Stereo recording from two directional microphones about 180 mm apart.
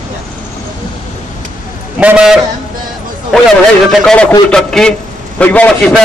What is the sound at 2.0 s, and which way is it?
Speech, 5° right (ahead or behind).